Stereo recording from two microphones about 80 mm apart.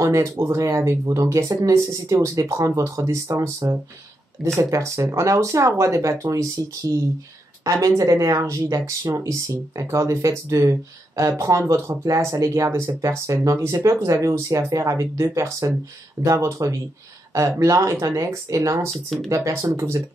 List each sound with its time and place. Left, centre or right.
0.0 s speech: right
8.0 s speech: right